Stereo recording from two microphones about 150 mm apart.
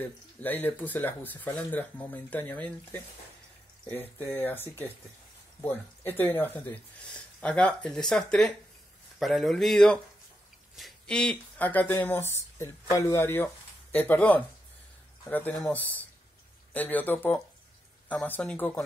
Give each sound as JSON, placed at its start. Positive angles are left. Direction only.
{"t": 0.4, "sound": "speech", "side_deg": 10}